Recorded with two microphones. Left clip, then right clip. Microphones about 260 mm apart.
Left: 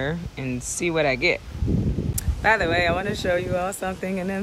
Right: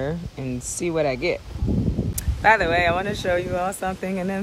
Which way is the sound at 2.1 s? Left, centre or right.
Centre.